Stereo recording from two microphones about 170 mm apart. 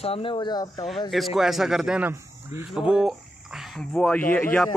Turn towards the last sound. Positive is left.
turn(degrees=10)  # may be behind; listen again after turning